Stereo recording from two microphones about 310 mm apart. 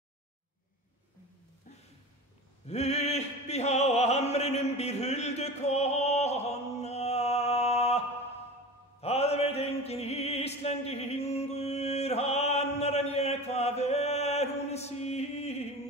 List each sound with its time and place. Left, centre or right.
2.6 s opera: left
9.0 s mantra: centre